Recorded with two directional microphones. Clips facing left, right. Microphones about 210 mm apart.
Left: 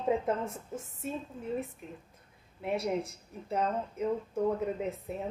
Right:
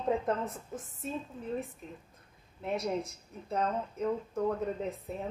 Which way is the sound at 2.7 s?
30° left (ahead or behind).